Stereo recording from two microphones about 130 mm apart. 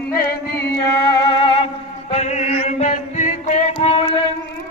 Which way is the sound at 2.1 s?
60° left (ahead or behind).